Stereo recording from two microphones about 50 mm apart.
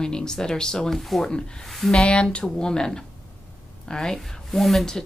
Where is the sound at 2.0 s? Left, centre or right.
Centre.